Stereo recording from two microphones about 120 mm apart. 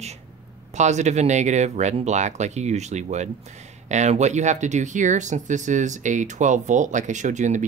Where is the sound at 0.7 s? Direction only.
75° right (ahead or behind).